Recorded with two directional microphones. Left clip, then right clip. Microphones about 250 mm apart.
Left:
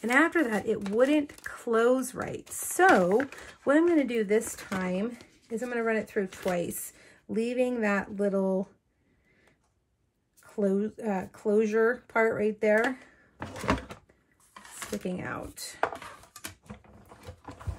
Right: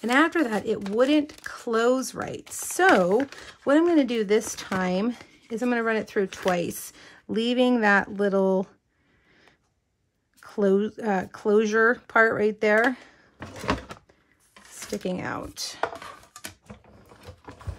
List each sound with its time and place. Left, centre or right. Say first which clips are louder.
0.0 s speech: right 3 dB; centre
4.1 s speech: right 3 dB; centre
10.5 s speech: right 6 dB; right
13.4 s door: right 1 dB; centre
15.0 s speech: right 6 dB; centre
15.4 s a sound: right 2 dB; centre